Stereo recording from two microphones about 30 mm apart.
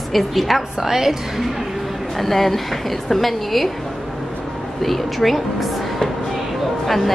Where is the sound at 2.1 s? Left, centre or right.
Centre.